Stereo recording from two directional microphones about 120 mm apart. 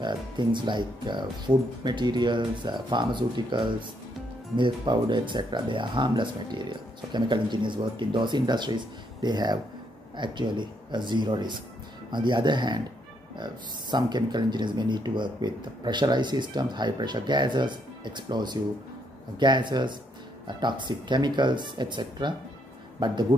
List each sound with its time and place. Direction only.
0.0 s speech: 40° right (ahead or behind)